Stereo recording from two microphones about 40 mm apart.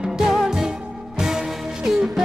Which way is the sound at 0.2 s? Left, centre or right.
Centre.